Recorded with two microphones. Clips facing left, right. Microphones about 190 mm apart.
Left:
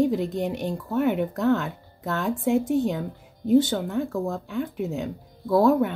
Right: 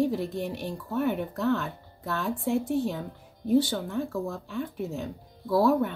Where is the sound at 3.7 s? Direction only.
60° left (ahead or behind).